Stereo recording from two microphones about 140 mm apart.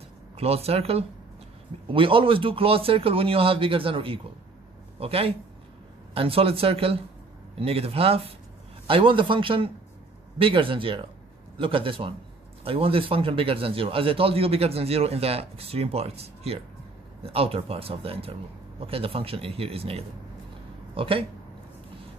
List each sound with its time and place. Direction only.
0.4 s a man's voice: 45° right (ahead or behind)